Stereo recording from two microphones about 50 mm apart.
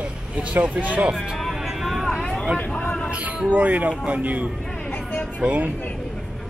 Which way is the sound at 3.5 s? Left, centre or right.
Right.